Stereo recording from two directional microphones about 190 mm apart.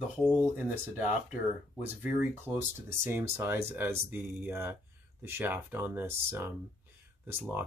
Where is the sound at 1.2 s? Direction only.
5° right (ahead or behind).